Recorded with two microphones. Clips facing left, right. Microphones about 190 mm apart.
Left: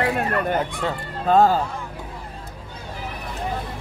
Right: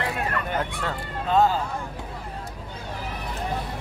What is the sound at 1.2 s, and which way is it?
Speech, 50° left (ahead or behind).